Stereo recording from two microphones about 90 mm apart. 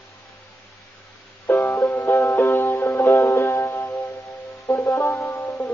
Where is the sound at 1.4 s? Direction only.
20° left (ahead or behind).